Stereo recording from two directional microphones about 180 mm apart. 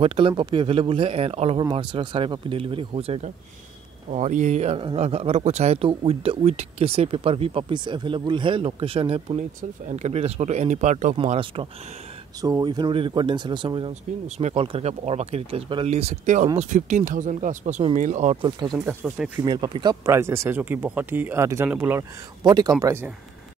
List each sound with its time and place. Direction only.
0.0 s speech: 30° right (ahead or behind)
11.1 s speech: 30° right (ahead or behind)
12.4 s speech: 20° right (ahead or behind); by 18.4 s 40° right (ahead or behind)
18.4 s speech: 25° right (ahead or behind)
18.9 s speech: 10° right (ahead or behind)
19.4 s speech: 25° right (ahead or behind)
22.4 s speech: 25° right (ahead or behind)